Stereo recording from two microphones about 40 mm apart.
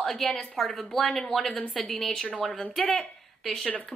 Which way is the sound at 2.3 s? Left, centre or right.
Centre.